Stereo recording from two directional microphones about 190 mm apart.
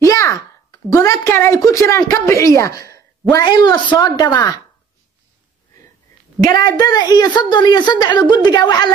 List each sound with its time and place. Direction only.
0.0 s a child's voice: 15° left (ahead or behind)
6.6 s a child's voice: 20° left (ahead or behind)